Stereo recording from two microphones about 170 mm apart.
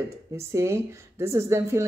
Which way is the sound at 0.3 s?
15° right (ahead or behind).